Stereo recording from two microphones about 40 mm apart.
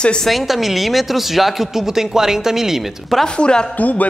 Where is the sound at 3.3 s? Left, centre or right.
Left.